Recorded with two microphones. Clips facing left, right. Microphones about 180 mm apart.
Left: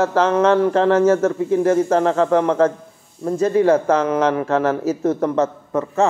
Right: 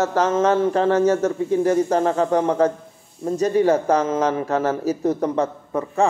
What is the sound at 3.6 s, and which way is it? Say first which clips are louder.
Speech: left 2 dB; 35° right (ahead or behind).